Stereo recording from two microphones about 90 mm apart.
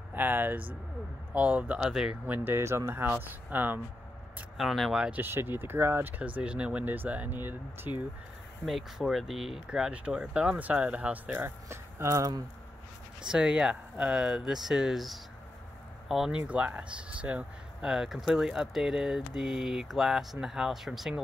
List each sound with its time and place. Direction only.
0.1 s speech: 20° right (ahead or behind)
4.6 s speech: centre (ahead or behind)
5.1 s speech: 25° right (ahead or behind)
8.6 s speech: centre (ahead or behind)
11.2 s speech: 25° right (ahead or behind)
13.2 s speech: 5° right (ahead or behind)